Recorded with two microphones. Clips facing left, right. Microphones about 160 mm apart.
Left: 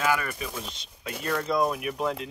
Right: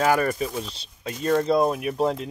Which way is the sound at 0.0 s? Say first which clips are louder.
Right 6 dB; 40° right (ahead or behind).